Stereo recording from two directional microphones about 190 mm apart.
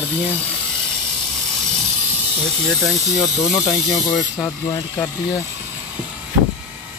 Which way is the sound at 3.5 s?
Centre (ahead or behind).